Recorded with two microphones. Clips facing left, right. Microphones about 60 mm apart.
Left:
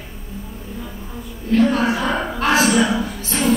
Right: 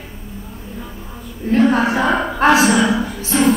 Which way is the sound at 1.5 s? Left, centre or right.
Right.